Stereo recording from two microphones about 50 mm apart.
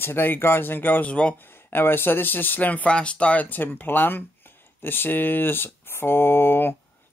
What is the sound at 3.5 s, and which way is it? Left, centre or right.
Speech, left.